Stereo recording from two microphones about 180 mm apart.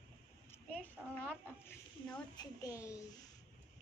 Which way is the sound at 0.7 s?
10° left (ahead or behind).